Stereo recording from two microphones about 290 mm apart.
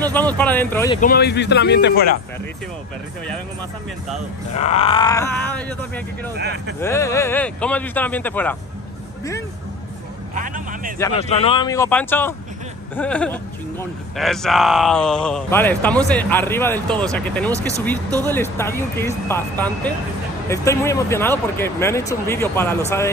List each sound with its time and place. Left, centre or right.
0.0 s speech: centre
1.0 s a man's voice: left
4.6 s speech: left; by 6.3 s centre
6.3 s speech: right
6.8 s speech: centre
10.3 s vehicle: right
11.1 s speech: left